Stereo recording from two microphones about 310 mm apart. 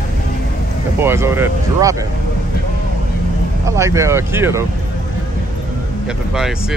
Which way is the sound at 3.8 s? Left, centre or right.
Centre.